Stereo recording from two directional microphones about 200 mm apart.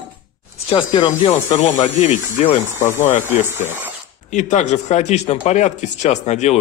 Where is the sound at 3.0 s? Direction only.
40° left (ahead or behind).